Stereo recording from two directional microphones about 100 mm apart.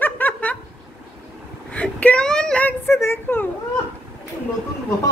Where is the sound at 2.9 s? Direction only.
25° left (ahead or behind).